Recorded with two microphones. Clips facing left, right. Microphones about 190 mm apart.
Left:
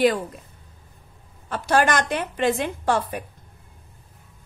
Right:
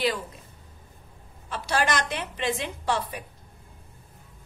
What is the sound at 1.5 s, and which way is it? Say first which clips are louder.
A woman's voice: left 6 dB; 50° left (ahead or behind).